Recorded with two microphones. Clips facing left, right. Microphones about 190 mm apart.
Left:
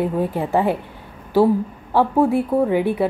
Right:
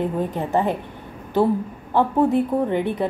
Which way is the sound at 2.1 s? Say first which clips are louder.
Left 2 dB; 10° left (ahead or behind).